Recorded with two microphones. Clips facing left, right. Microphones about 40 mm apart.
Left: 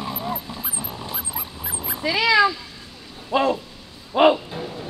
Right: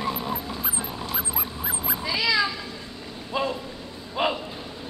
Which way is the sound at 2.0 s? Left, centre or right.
Left.